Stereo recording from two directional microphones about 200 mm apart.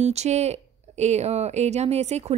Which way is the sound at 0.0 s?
35° right (ahead or behind).